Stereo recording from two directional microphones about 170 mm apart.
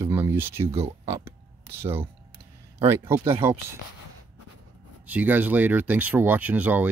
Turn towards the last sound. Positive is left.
turn(degrees=-10)  # may be behind; listen again after turning